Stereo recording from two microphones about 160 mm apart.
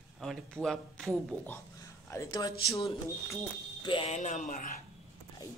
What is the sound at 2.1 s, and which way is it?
Speech, 20° left (ahead or behind).